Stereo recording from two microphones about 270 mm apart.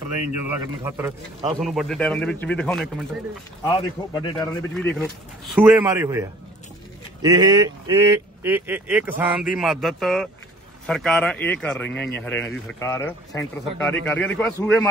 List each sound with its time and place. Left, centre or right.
0.8 s speech: centre
3.6 s a man's voice: centre
4.7 s speech: centre
11.9 s speech: left
12.2 s a man's voice: centre